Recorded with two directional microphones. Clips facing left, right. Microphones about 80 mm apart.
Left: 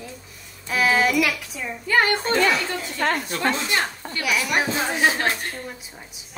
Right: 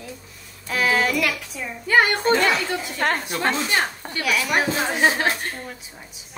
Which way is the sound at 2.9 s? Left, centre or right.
Right.